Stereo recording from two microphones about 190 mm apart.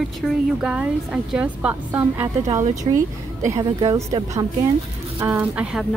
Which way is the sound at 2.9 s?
30° right (ahead or behind).